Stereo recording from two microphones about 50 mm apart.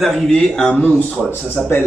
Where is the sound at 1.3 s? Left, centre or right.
Left.